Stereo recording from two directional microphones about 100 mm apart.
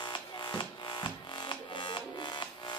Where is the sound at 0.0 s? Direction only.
50° left (ahead or behind).